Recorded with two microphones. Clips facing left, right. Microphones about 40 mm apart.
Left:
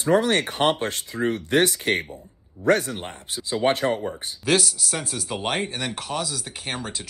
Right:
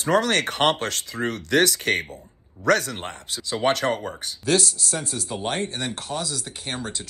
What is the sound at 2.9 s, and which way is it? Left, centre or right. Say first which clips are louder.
Speech: even; right.